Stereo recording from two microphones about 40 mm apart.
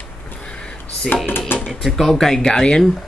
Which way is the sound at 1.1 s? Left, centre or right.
Left.